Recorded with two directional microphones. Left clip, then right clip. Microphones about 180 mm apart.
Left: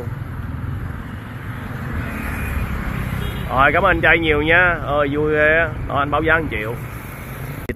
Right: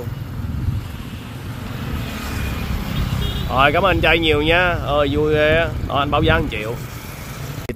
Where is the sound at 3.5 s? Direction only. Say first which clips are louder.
Left 1 dB; 20° right (ahead or behind).